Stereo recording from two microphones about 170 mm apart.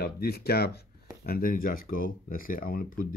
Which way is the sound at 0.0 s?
70° left (ahead or behind).